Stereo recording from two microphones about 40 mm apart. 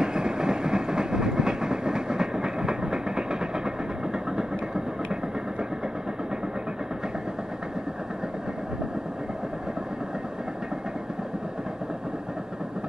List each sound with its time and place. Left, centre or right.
0.0 s train: centre